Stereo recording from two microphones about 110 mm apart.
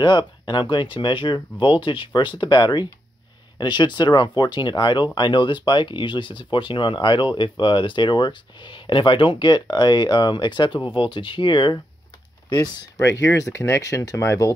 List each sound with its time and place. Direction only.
0.5 s speech: 45° left (ahead or behind)
12.9 s speech: 25° left (ahead or behind)